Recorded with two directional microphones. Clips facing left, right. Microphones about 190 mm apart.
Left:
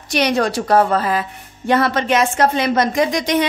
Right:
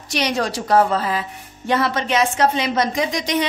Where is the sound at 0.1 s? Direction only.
60° left (ahead or behind).